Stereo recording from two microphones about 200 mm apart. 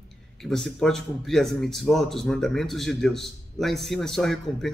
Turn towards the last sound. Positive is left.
turn(degrees=0)  # may be behind; listen again after turning